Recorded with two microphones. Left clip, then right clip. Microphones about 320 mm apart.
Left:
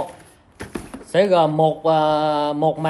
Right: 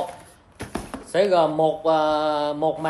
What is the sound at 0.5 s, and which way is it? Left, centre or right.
Chopping, centre.